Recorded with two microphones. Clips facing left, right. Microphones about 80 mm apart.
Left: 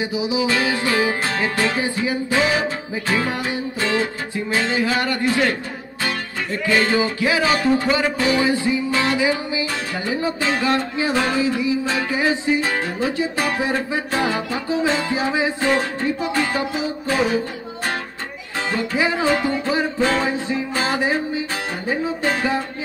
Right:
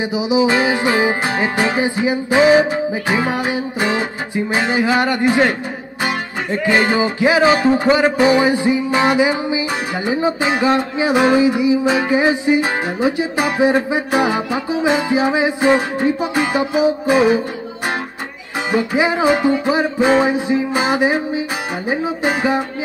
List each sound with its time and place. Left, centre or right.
0.0 s music: right
18.7 s music: centre